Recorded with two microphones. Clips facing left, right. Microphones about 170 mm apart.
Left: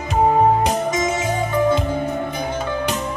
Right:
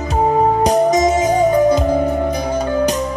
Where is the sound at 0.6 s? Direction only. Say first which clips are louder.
Right 7 dB; 40° right (ahead or behind).